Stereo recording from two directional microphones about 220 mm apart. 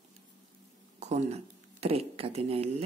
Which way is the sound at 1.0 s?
30° right (ahead or behind).